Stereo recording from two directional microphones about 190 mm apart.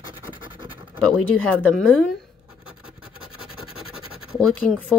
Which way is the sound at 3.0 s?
5° right (ahead or behind).